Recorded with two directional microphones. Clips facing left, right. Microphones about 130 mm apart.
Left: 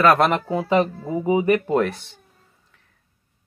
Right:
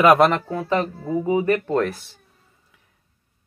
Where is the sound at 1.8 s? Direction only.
Centre (ahead or behind).